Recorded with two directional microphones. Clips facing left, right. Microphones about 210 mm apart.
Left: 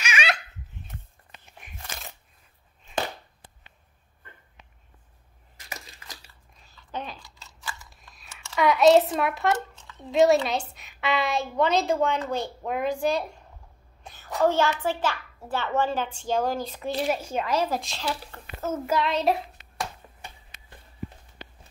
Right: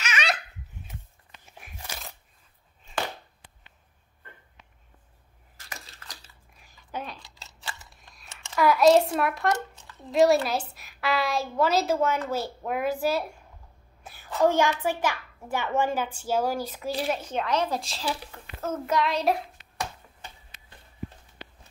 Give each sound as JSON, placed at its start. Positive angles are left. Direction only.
{"t": 0.0, "sound": "laughter", "side_deg": 10}
{"t": 1.4, "sound": "a sound", "side_deg": -5}
{"t": 5.7, "sound": "crushing", "side_deg": 10}
{"t": 6.6, "sound": "chewing", "side_deg": -10}
{"t": 7.2, "sound": "a sound", "side_deg": -25}
{"t": 8.5, "sound": "a child's voice", "side_deg": 0}